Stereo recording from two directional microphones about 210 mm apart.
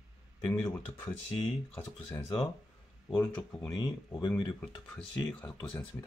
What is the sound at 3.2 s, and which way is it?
Speech, 15° left (ahead or behind).